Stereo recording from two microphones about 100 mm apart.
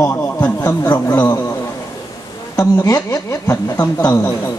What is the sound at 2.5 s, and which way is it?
Speech, 35° left (ahead or behind).